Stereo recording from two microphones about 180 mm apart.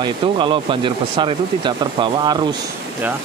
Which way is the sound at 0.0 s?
25° right (ahead or behind).